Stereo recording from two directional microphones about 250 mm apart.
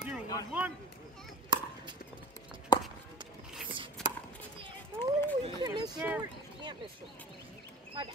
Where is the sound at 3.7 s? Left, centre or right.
Centre.